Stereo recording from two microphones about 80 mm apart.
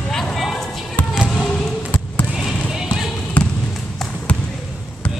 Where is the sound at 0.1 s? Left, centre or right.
Centre.